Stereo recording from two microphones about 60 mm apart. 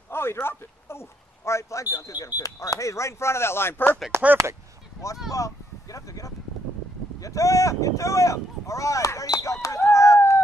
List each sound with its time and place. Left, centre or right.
0.1 s speech: left
5.3 s speech: left